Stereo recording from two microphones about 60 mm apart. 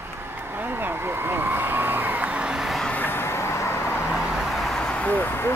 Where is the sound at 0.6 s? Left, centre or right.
Right.